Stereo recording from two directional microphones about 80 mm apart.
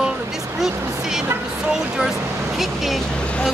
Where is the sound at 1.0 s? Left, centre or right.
Centre.